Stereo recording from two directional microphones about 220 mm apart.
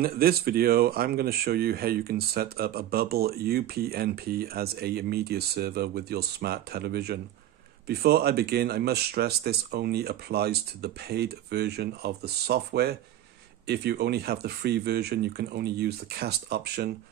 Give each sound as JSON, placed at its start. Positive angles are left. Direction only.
{"t": 0.0, "sound": "speech", "side_deg": -45}